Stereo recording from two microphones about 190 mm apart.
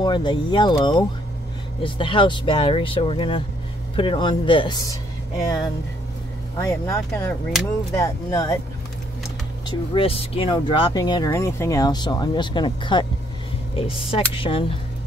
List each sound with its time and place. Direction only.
0.0 s speech: 25° left (ahead or behind)
6.6 s speech: 15° left (ahead or behind)
9.7 s speech: 30° left (ahead or behind)